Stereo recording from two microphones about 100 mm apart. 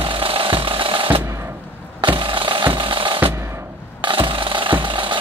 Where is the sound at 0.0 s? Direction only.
65° right (ahead or behind).